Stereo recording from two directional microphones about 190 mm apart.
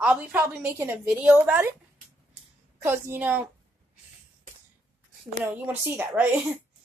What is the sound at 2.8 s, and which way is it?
Speech, 10° right (ahead or behind).